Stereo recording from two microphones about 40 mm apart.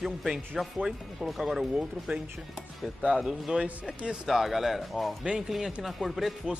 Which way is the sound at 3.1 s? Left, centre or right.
Centre.